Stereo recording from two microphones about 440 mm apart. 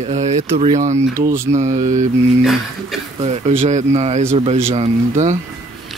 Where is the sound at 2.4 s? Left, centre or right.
Centre.